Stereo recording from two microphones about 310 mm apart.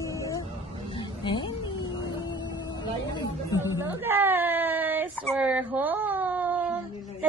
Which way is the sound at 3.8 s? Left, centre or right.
Centre.